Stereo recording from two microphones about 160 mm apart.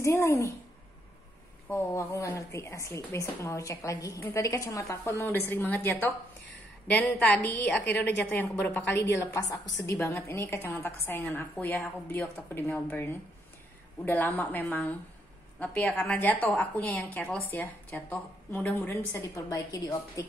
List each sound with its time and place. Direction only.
0.0 s a woman's voice: 20° left (ahead or behind)
1.7 s a woman's voice: 20° left (ahead or behind)